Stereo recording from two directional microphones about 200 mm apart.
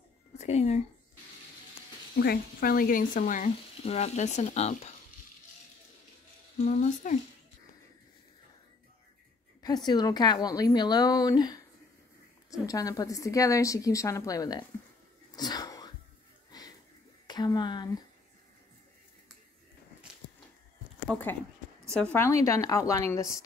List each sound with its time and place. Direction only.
0.4 s speech: 35° left (ahead or behind)
2.1 s speech: 50° left (ahead or behind); by 4.9 s 35° left (ahead or behind)
6.6 s speech: 40° left (ahead or behind)
9.8 s a woman's voice: 20° left (ahead or behind)
12.6 s a woman's voice: 15° left (ahead or behind)
15.3 s a sound: 20° left (ahead or behind)
17.3 s a woman's voice: 20° left (ahead or behind)
21.1 s a woman's voice: 10° left (ahead or behind)